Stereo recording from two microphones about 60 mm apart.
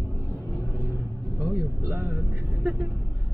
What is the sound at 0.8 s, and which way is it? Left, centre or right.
Vehicle, right.